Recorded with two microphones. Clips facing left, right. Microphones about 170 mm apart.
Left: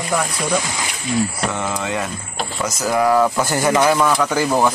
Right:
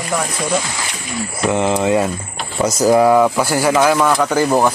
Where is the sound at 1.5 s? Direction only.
20° right (ahead or behind).